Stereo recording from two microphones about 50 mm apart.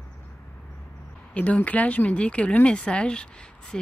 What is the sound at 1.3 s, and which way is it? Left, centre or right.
Speech, left.